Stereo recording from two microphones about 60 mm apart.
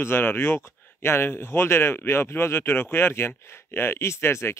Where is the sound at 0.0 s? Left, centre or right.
Left.